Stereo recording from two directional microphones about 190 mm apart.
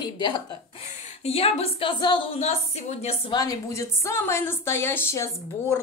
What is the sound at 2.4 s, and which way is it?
Speech, 35° left (ahead or behind).